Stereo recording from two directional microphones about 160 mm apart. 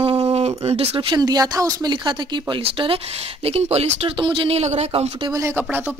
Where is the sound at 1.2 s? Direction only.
25° right (ahead or behind); by 5.1 s 45° right (ahead or behind).